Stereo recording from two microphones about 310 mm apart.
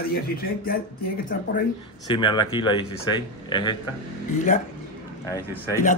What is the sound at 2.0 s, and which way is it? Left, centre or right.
A man's voice, centre.